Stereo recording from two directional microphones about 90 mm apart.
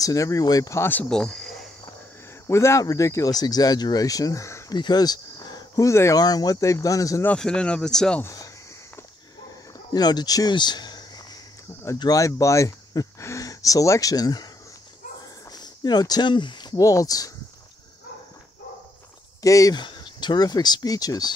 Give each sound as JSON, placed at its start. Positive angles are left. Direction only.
{"t": 0.0, "sound": "speech", "side_deg": 40}
{"t": 0.7, "sound": "speech", "side_deg": 20}
{"t": 1.1, "sound": "speech", "side_deg": 5}
{"t": 2.4, "sound": "speech", "side_deg": 35}
{"t": 4.7, "sound": "a sound", "side_deg": 50}
{"t": 5.9, "sound": "speech", "side_deg": 35}
{"t": 7.3, "sound": "speech", "side_deg": 10}
{"t": 8.2, "sound": "speech", "side_deg": 35}
{"t": 9.9, "sound": "speech", "side_deg": 50}
{"t": 12.0, "sound": "speech", "side_deg": 40}
{"t": 15.5, "sound": "speech", "side_deg": 50}
{"t": 16.8, "sound": "speech", "side_deg": 40}
{"t": 19.4, "sound": "speech", "side_deg": 40}
{"t": 19.7, "sound": "speech", "side_deg": 55}